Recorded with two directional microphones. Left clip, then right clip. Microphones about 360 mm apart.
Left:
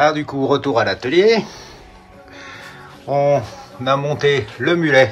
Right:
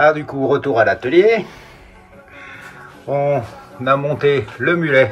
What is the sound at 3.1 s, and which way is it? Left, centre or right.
Speech, centre.